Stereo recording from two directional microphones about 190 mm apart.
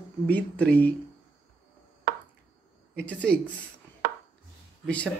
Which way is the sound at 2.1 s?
60° right (ahead or behind).